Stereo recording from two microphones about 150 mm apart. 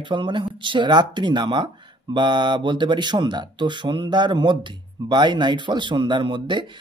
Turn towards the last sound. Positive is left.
turn(degrees=-30)  # may be behind; listen again after turning